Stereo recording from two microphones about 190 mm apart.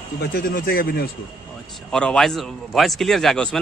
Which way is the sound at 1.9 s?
5° left (ahead or behind).